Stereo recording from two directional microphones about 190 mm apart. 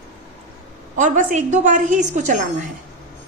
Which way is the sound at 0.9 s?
40° right (ahead or behind).